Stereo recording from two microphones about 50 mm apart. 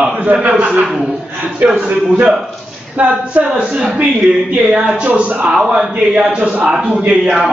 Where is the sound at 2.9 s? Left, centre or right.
Right.